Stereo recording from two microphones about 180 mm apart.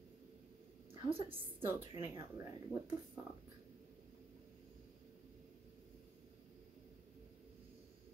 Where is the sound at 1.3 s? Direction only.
10° right (ahead or behind).